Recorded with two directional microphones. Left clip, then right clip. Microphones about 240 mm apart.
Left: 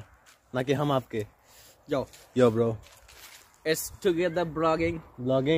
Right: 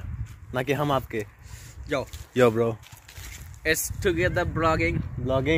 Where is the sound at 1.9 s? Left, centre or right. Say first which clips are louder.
Right 1 dB; centre.